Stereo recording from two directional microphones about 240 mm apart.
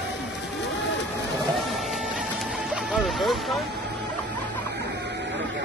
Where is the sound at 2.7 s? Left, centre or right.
Centre.